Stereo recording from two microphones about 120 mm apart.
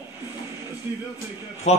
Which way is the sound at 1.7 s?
70° left (ahead or behind).